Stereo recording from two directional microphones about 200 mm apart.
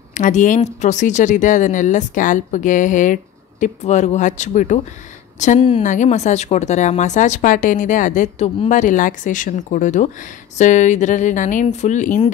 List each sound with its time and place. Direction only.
0.1 s speech: 40° left (ahead or behind)